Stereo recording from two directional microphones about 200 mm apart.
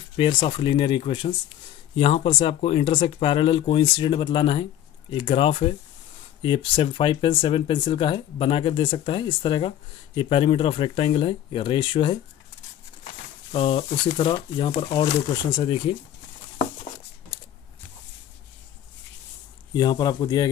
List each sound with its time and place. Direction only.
0.2 s speech: 25° left (ahead or behind)
19.7 s speech: 20° left (ahead or behind)